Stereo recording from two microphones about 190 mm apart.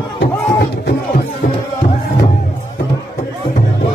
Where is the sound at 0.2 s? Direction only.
60° left (ahead or behind).